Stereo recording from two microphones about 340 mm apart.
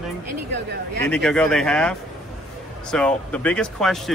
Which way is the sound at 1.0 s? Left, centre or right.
Centre.